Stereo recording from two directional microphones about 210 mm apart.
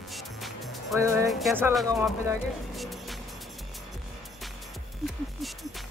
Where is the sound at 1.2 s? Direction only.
Centre (ahead or behind).